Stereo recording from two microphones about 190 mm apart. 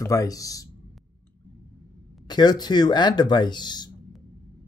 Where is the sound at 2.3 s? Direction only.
20° left (ahead or behind).